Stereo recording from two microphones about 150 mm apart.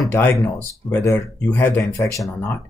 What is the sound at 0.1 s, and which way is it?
Speech, 15° left (ahead or behind).